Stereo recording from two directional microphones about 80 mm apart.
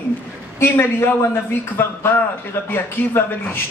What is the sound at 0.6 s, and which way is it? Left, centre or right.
A man's voice, left.